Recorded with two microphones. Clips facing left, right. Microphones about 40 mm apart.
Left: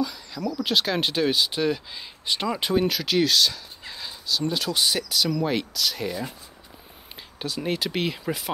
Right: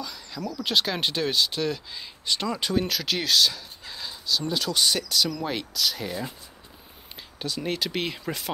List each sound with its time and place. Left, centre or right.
0.0 s a sound: centre
0.4 s speech: left
0.7 s speech: centre
7.3 s speech: centre